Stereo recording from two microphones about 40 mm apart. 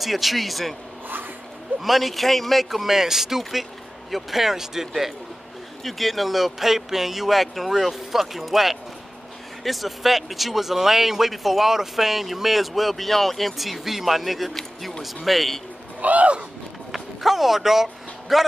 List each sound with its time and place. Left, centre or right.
0.0 s speech: centre
1.8 s speech: centre
16.0 s a sound: right
16.9 s speech: centre